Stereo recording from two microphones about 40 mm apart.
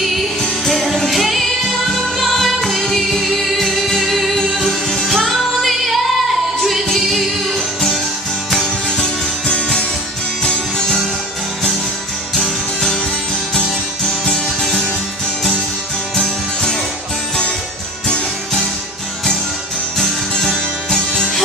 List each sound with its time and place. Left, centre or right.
0.7 s music: centre
8.5 s music: centre
13.6 s music: centre